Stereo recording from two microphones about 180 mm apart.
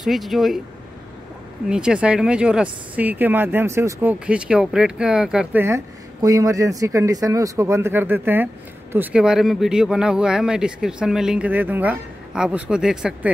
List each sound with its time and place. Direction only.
0.0 s speech: centre (ahead or behind)
1.7 s speech: 5° right (ahead or behind)